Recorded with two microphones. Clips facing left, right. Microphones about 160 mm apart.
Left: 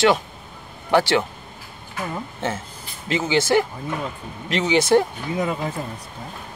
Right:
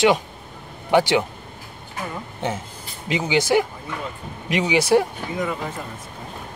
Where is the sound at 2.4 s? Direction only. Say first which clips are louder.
Right 2 dB; 15° right (ahead or behind).